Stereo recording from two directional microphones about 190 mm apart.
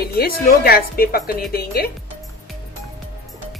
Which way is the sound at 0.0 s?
50° left (ahead or behind).